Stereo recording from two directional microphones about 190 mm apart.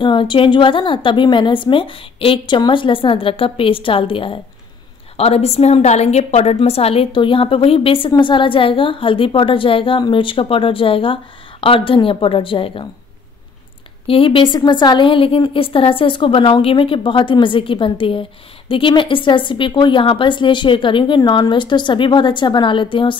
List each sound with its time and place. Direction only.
0.0 s a woman's voice: 25° left (ahead or behind)
14.0 s a woman's voice: 30° left (ahead or behind)